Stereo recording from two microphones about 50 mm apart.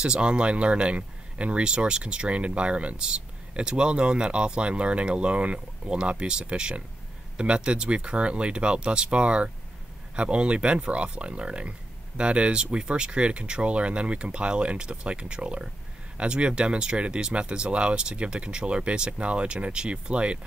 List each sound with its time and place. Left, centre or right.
0.0 s speech: right